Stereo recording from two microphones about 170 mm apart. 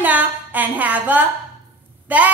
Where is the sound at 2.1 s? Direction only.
10° right (ahead or behind).